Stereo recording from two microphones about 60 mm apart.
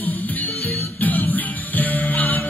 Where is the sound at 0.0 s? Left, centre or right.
Left.